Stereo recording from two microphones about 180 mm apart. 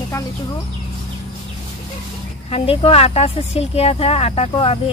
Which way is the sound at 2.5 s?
30° left (ahead or behind).